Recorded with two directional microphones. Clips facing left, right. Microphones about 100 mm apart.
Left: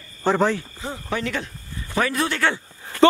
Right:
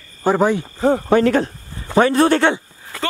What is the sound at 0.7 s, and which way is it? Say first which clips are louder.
Speech: right 14 dB; 55° right (ahead or behind).